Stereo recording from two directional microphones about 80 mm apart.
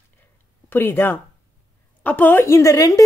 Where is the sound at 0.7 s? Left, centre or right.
Left.